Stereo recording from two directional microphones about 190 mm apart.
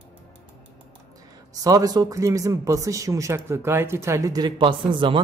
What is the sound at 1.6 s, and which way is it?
Speech, 20° right (ahead or behind).